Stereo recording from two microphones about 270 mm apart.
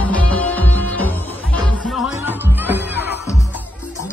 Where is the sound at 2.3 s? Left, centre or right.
Centre.